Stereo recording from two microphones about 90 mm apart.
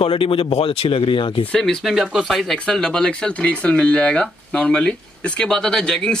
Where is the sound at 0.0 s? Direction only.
90° left; by 1.5 s 70° left (ahead or behind).